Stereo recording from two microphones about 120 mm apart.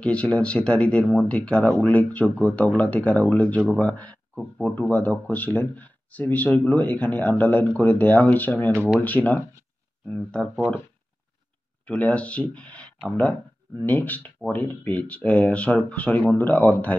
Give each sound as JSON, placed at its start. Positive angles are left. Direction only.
{"t": 0.0, "sound": "speech", "side_deg": 10}
{"t": 11.8, "sound": "speech", "side_deg": 10}